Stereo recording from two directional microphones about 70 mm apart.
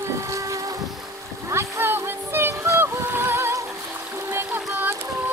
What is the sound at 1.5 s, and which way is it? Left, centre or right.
Music, right.